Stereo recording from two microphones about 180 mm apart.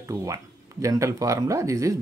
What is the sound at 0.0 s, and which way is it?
Speech, 15° right (ahead or behind).